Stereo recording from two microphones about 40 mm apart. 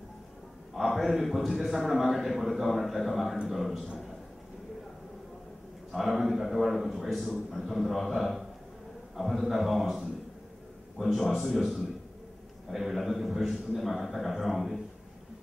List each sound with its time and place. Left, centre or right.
0.7 s a man's voice: centre
5.9 s a man's voice: centre